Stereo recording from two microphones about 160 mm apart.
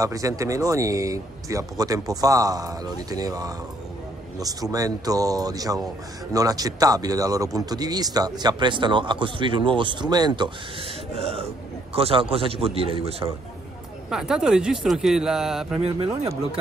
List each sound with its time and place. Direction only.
0.0 s speech: 20° right (ahead or behind)
11.1 s speech: 40° right (ahead or behind)
14.1 s speech: 5° right (ahead or behind)